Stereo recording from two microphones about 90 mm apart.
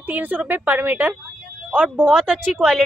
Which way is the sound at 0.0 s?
15° right (ahead or behind).